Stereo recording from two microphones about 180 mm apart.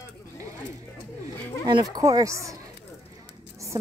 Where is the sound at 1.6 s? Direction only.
20° right (ahead or behind).